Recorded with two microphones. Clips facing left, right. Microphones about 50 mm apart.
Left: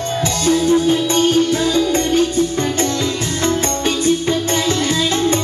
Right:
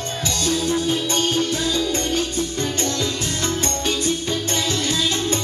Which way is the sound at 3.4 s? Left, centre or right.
Left.